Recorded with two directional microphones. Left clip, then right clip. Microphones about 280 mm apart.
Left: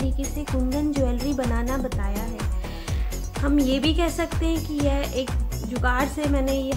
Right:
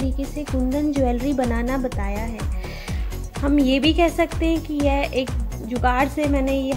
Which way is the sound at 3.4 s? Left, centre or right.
Centre.